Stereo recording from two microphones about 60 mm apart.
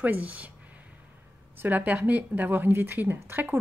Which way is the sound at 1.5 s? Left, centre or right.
Right.